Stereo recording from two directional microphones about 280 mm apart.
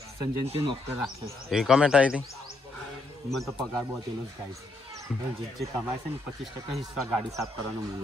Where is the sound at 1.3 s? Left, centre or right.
Centre.